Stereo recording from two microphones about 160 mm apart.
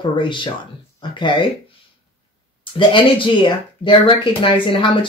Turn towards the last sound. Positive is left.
turn(degrees=30)  # may be behind; listen again after turning